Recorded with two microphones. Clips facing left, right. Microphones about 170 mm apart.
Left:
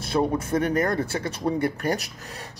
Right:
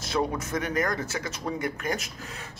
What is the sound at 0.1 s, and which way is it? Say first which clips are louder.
Speech: left 5 dB; 30° left (ahead or behind).